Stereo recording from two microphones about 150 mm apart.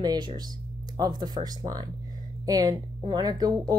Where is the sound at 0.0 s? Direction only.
30° right (ahead or behind).